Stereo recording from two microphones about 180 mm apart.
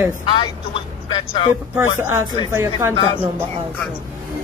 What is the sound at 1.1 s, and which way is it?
Speech, 30° left (ahead or behind).